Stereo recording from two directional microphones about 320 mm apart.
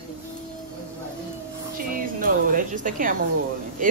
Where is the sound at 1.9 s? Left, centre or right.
Right.